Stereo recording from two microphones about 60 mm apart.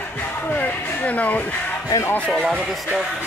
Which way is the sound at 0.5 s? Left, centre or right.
Left.